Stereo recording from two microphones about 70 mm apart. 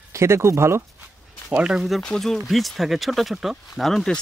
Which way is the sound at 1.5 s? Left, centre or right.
Centre.